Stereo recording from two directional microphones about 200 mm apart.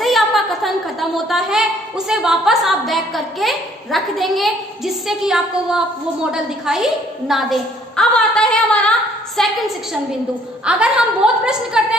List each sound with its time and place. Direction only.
0.0 s a woman's voice: centre (ahead or behind)
10.6 s a woman's voice: 5° right (ahead or behind)